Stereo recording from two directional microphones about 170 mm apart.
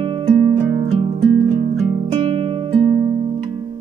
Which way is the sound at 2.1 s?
30° right (ahead or behind).